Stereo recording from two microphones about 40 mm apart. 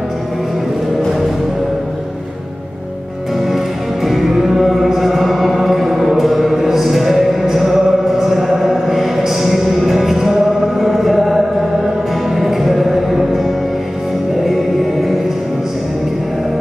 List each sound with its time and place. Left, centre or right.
3.5 s music: centre